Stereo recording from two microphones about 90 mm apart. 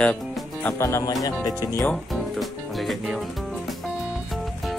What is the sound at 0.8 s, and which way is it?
Speech, 30° left (ahead or behind).